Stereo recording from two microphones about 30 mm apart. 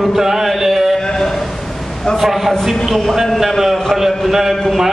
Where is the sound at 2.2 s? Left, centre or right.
Centre.